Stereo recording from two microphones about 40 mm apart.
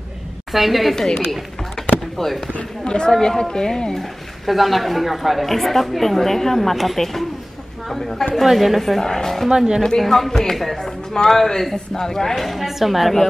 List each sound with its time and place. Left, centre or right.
0.5 s speech: centre
0.9 s speech: centre
1.8 s chop: centre
2.1 s speech: centre
2.9 s speech: centre
3.9 s speech: centre
12.4 s speech: centre